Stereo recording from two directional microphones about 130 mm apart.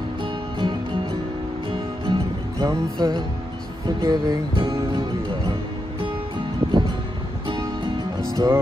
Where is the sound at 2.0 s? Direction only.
35° right (ahead or behind).